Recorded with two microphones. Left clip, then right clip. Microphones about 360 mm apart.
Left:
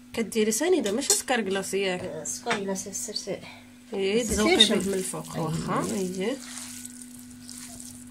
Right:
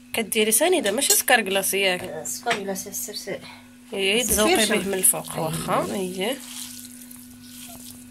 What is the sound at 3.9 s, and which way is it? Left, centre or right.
Speech, centre.